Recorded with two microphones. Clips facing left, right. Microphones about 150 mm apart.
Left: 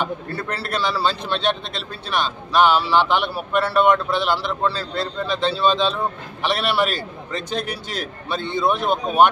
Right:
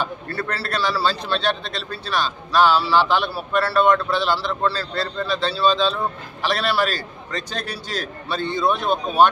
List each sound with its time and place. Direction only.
0.0 s a man's voice: 20° left (ahead or behind)